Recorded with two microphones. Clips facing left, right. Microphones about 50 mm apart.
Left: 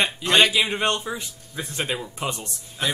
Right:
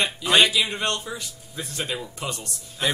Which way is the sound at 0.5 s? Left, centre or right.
Left.